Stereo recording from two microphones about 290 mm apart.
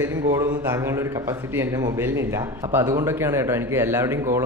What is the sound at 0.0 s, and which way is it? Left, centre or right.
Speech, centre.